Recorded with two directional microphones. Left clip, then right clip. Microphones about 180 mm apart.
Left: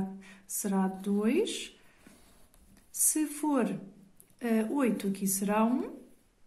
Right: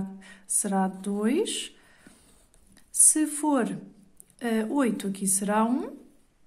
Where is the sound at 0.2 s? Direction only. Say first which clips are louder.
Right 5 dB; 35° right (ahead or behind).